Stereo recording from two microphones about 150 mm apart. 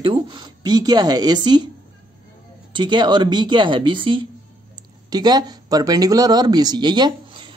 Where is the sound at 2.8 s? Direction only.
30° right (ahead or behind).